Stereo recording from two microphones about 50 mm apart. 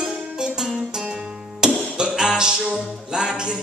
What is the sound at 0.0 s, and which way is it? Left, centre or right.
Music, centre.